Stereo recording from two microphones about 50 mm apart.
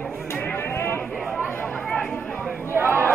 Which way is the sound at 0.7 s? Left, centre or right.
Left.